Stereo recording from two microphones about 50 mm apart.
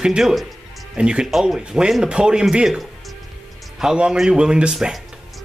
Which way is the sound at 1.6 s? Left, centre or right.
Centre.